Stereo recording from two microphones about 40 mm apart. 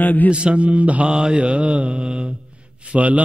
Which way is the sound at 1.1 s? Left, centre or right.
Right.